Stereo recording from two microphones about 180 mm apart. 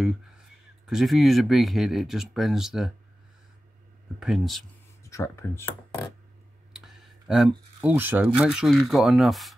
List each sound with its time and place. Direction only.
0.8 s speech: centre (ahead or behind)
4.2 s speech: centre (ahead or behind)
5.0 s speech: 15° left (ahead or behind)
6.7 s clicking: centre (ahead or behind)
7.8 s speech: 10° right (ahead or behind)